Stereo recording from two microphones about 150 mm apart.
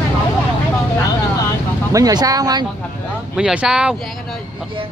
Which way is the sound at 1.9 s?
25° right (ahead or behind).